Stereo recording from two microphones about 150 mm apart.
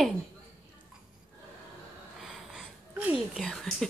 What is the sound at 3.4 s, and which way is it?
Whispering, 5° left (ahead or behind).